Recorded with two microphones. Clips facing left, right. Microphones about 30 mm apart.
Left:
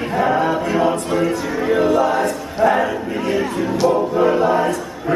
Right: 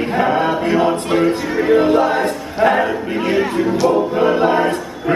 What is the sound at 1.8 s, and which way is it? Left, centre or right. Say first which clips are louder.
Choir: right 2 dB; right.